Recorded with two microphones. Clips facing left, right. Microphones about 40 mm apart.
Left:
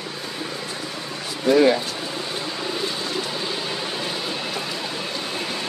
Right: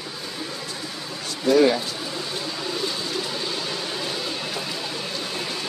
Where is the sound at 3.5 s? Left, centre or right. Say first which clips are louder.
Left 1 dB; centre.